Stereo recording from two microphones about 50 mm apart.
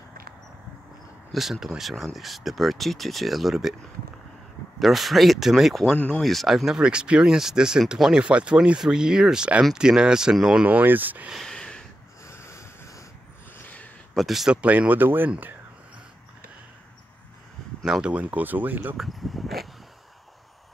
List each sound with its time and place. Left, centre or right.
1.3 s speech: centre
4.7 s speech: centre
6.8 s speech: centre
10.6 s speech: right
11.4 s a sound: centre
12.3 s a sound: left
13.6 s a sound: left
14.1 s speech: centre
14.5 s speech: right
15.0 s speech: right
18.0 s speech: right
18.9 s a sound: centre